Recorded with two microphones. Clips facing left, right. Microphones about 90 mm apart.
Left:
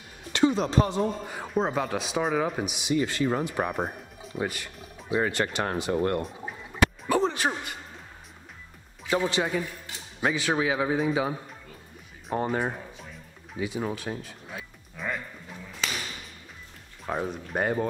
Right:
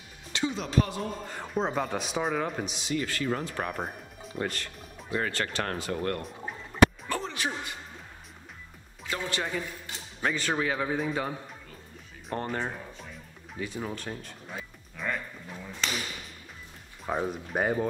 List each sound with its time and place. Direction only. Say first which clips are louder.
0.3 s music: left 8 dB; 55° left (ahead or behind)
0.6 s speech: left 4 dB; 30° left (ahead or behind)
1.2 s a man's voice: left 3 dB; 5° left (ahead or behind)
3.7 s music: left 4 dB; centre (ahead or behind)
5.2 s speech: left 4 dB; 15° left (ahead or behind)
6.2 s a sound: left 1 dB; centre (ahead or behind)
7.2 s a man's voice: left 6 dB; 50° left (ahead or behind)
9.1 s speech: left 7 dB; 20° left (ahead or behind)
10.2 s a man's voice: left 3 dB; 5° left (ahead or behind)
13.6 s music: left 4 dB; 10° left (ahead or behind)
17.0 s speech: even; centre (ahead or behind)